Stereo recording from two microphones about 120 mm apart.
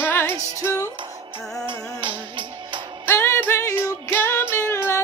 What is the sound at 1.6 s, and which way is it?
Music, 45° right (ahead or behind).